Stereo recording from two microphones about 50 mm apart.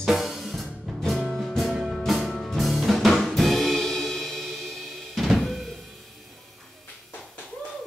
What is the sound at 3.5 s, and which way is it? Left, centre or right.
Music, centre.